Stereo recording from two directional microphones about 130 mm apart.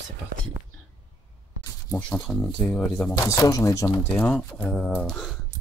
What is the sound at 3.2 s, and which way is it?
Speech, 25° left (ahead or behind).